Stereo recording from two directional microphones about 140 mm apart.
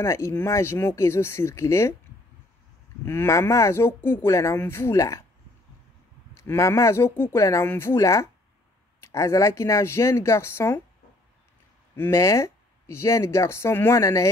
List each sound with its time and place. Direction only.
0.0 s speech: 20° left (ahead or behind)
3.1 s speech: 15° left (ahead or behind)
6.3 s speech: 20° left (ahead or behind)
11.9 s speech: 20° left (ahead or behind)